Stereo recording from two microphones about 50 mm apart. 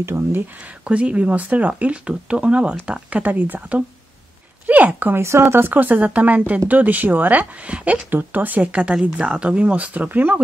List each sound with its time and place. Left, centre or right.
0.0 s speech: right
0.8 s speech: right
3.2 s speech: right
5.1 s speech: right
5.6 s speech: right
8.1 s speech: right
9.0 s speech: right